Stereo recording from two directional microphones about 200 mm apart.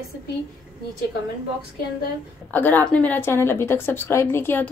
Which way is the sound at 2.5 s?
10° left (ahead or behind).